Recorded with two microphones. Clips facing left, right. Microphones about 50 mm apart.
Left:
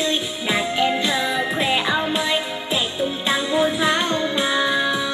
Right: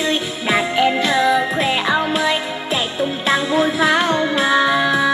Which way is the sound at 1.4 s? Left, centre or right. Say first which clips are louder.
Right 2 dB; centre.